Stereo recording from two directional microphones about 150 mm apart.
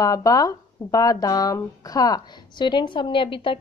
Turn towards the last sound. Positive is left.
turn(degrees=35)  # may be behind; listen again after turning